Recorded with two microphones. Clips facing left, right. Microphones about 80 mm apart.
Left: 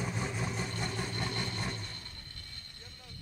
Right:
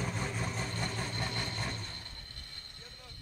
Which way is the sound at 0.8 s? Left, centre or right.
Centre.